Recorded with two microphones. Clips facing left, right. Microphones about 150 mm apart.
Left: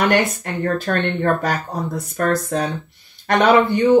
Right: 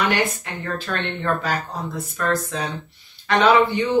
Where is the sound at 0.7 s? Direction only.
50° left (ahead or behind).